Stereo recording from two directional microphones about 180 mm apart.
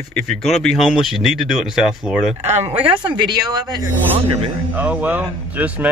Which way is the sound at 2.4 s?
40° right (ahead or behind).